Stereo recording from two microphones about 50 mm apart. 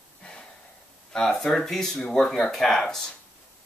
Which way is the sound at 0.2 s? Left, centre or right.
Centre.